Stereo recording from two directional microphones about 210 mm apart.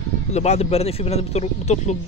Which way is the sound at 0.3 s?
30° left (ahead or behind).